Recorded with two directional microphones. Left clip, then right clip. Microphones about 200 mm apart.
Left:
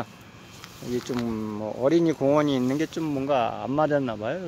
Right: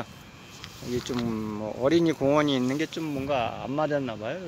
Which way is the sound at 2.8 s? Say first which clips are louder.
Left 3 dB; 25° left (ahead or behind).